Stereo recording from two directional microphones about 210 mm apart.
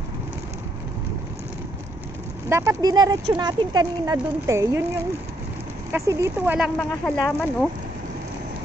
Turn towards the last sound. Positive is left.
turn(degrees=5)  # may be behind; listen again after turning